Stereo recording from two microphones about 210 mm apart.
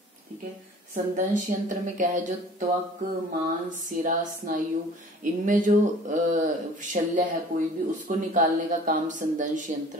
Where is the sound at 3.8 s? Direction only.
40° right (ahead or behind).